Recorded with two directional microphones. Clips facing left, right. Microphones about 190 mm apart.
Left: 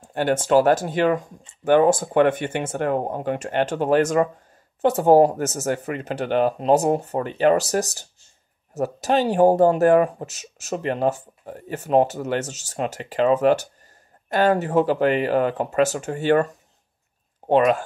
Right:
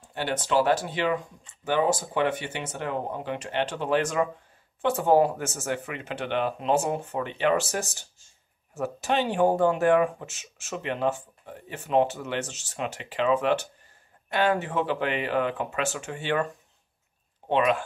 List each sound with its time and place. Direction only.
0.0 s speech: 50° left (ahead or behind)